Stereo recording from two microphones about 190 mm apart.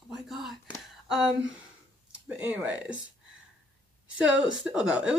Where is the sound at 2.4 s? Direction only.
5° right (ahead or behind).